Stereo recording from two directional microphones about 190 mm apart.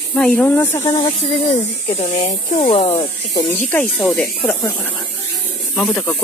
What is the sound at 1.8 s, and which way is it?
Speech, 35° left (ahead or behind).